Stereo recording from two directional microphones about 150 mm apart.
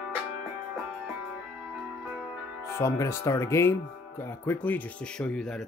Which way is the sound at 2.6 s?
20° left (ahead or behind).